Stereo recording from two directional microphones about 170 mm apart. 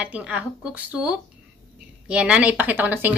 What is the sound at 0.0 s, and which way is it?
A woman's voice, 5° right (ahead or behind).